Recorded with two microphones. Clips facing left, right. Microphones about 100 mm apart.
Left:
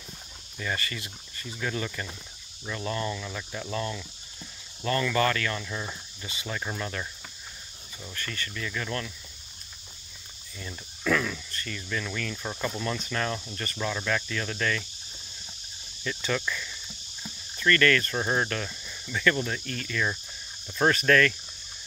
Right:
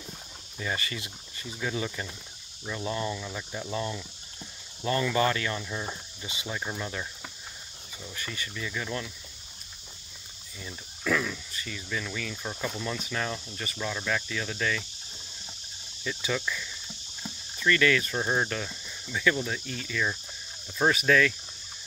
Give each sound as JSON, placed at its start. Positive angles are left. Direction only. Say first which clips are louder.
{"t": 0.6, "sound": "speech", "louder": "even", "side_deg": -20}
{"t": 8.1, "sound": "speech", "louder": "left 1 dB", "side_deg": -10}
{"t": 10.6, "sound": "speech", "louder": "left 2 dB", "side_deg": -5}
{"t": 16.0, "sound": "speech", "louder": "left 1 dB", "side_deg": -10}